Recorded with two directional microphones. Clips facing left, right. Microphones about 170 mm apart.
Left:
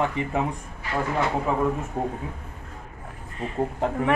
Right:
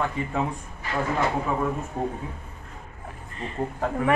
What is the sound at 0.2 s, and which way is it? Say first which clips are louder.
Speech: left 2 dB; 20° left (ahead or behind).